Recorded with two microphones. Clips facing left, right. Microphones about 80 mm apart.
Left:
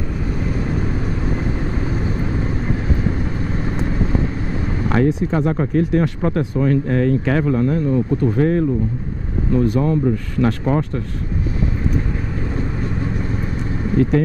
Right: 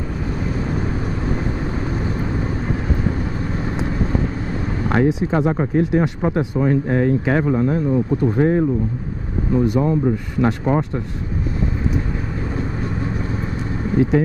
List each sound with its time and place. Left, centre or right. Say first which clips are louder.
4.8 s speech: even; centre